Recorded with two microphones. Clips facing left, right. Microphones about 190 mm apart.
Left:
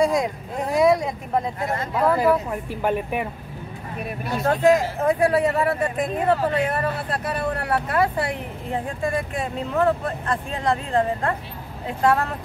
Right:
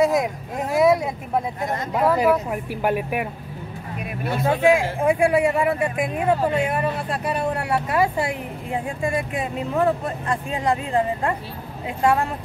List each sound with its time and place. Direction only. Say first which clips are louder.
0.0 s a sound: right 1 dB; 5° right (ahead or behind)
0.7 s speech: right 1 dB; 5° right (ahead or behind)
1.7 s speech: right 1 dB; 20° right (ahead or behind)
4.5 s speech: left 1 dB; 10° right (ahead or behind)